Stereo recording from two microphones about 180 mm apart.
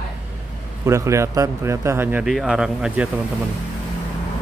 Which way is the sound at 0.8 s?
15° right (ahead or behind).